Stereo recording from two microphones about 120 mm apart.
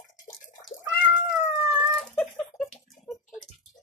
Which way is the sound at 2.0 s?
10° left (ahead or behind).